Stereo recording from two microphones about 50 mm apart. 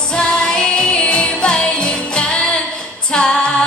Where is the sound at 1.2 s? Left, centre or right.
Left.